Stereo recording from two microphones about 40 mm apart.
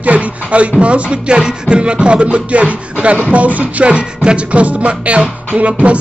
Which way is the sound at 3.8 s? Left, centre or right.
Right.